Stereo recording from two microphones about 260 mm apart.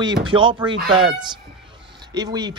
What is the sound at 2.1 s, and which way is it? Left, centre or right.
Speech, centre.